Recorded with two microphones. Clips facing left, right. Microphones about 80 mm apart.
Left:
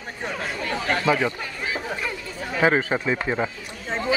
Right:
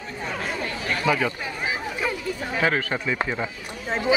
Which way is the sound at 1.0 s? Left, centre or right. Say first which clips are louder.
Even; centre.